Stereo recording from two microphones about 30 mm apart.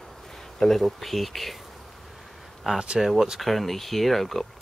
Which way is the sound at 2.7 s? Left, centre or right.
Centre.